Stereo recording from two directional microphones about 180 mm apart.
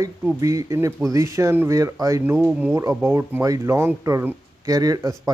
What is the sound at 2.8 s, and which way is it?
Speech, 15° right (ahead or behind).